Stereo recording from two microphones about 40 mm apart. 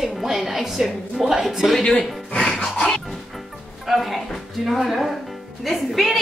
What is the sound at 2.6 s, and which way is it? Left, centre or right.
Dog, left.